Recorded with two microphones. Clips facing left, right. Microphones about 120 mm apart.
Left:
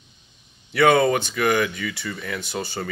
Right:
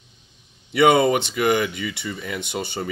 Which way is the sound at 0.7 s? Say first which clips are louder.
Right 1 dB; 20° right (ahead or behind).